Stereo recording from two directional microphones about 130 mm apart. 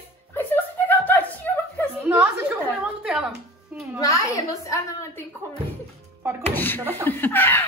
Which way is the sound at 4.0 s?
25° left (ahead or behind).